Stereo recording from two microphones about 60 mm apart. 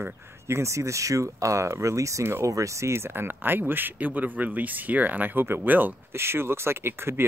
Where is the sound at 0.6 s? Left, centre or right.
Right.